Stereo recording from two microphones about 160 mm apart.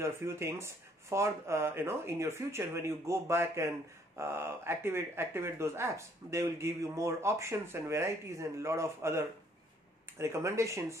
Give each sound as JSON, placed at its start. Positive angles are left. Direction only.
{"t": 0.0, "sound": "speech", "side_deg": -15}